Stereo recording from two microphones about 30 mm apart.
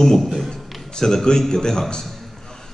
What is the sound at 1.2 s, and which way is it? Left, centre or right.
Speech, left.